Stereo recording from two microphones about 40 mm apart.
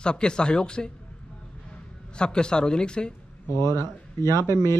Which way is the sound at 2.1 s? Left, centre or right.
Left.